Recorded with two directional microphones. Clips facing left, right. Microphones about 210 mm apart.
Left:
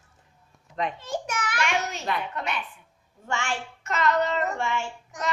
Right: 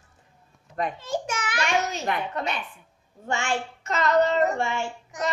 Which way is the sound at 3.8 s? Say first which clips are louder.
Right 3 dB; 35° right (ahead or behind).